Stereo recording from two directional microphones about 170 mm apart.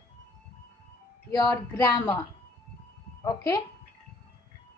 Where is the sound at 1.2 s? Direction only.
20° left (ahead or behind).